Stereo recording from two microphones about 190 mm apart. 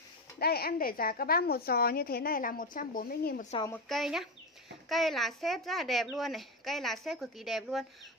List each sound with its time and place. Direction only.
0.4 s a woman's voice: 55° left (ahead or behind)
3.9 s a woman's voice: centre (ahead or behind)